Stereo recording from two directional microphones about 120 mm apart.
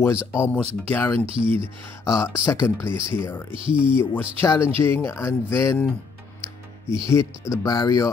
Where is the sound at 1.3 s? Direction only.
50° right (ahead or behind).